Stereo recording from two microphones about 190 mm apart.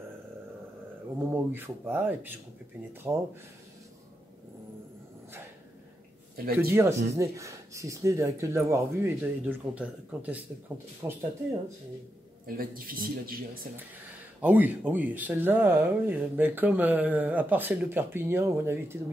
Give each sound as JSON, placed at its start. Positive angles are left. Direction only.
{"t": 1.3, "sound": "speech", "side_deg": -10}
{"t": 6.3, "sound": "a man's voice", "side_deg": -50}
{"t": 6.7, "sound": "speech", "side_deg": -15}
{"t": 12.4, "sound": "a man's voice", "side_deg": -50}
{"t": 14.4, "sound": "speech", "side_deg": -10}